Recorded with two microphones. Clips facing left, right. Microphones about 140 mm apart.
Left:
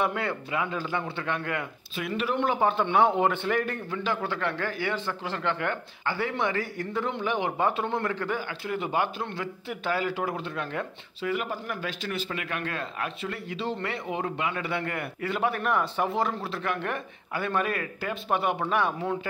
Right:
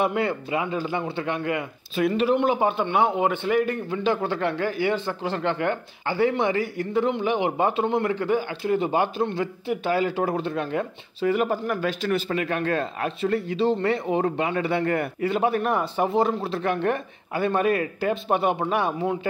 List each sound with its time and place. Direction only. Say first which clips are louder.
0.0 s speech: right 5 dB; 20° right (ahead or behind)
2.0 s speech: right 8 dB; 30° right (ahead or behind)
2.3 s a man's voice: right 3 dB; 15° right (ahead or behind)
3.9 s speech: right 5 dB; 25° right (ahead or behind)
10.6 s speech: right 6 dB; 25° right (ahead or behind)
11.1 s speech: right 8 dB; 40° right (ahead or behind)
15.1 s speech: right 6 dB; 25° right (ahead or behind)